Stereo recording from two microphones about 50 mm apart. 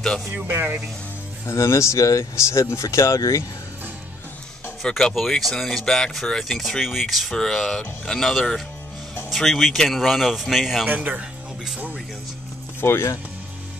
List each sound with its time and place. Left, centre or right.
0.5 s speech: right
1.4 s speech: left
5.1 s speech: centre
7.3 s speech: centre
12.8 s speech: left